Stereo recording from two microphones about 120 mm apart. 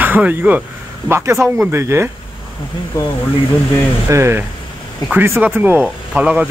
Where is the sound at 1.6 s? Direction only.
20° right (ahead or behind).